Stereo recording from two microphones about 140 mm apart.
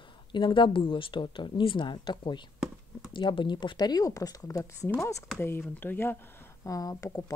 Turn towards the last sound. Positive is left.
turn(degrees=25)  # may be behind; listen again after turning